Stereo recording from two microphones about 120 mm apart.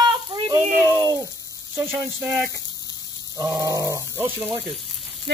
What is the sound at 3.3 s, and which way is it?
Grunt, 30° right (ahead or behind).